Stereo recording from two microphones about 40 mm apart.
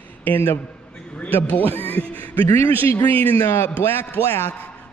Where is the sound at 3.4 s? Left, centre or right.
Left.